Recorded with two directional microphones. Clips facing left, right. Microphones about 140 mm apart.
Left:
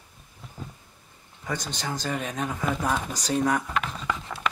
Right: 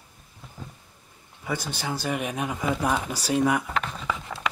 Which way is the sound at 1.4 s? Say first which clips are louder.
Right 1 dB; 10° right (ahead or behind).